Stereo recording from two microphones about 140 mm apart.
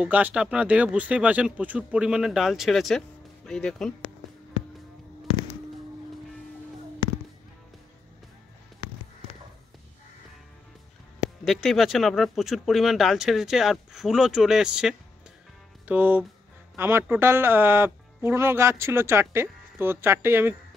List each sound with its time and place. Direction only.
0.0 s speech: 10° right (ahead or behind)
11.4 s speech: centre (ahead or behind); by 20.5 s 15° right (ahead or behind)